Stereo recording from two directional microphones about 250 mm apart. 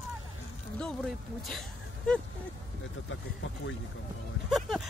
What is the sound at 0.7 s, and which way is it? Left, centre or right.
Speech, centre.